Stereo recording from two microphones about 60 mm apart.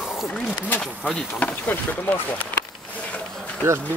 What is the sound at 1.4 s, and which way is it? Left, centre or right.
Speech, left.